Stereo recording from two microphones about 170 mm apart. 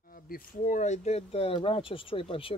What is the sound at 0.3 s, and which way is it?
Speech, 50° left (ahead or behind).